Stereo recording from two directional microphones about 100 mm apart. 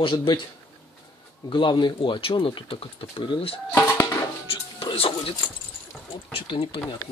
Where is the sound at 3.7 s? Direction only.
25° left (ahead or behind).